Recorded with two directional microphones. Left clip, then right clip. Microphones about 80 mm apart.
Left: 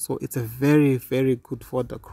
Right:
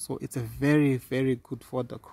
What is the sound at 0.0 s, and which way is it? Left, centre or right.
Speech, left.